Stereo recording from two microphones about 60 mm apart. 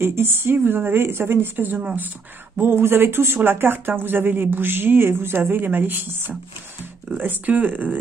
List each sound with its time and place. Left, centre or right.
0.0 s speech: right
7.2 s speech: right